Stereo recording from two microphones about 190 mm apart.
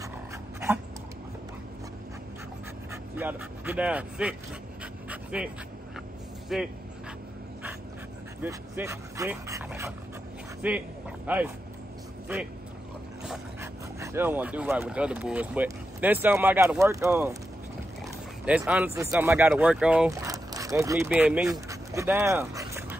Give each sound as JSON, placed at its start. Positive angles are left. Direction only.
{"t": 2.9, "sound": "speech", "side_deg": -10}
{"t": 5.1, "sound": "dog", "side_deg": -5}
{"t": 6.5, "sound": "speech", "side_deg": 0}
{"t": 8.4, "sound": "speech", "side_deg": -15}
{"t": 10.6, "sound": "a sound", "side_deg": -10}
{"t": 13.6, "sound": "speech", "side_deg": -15}
{"t": 18.0, "sound": "a sound", "side_deg": -5}
{"t": 18.9, "sound": "speech", "side_deg": -15}
{"t": 20.1, "sound": "speech", "side_deg": -15}
{"t": 21.5, "sound": "dog", "side_deg": -15}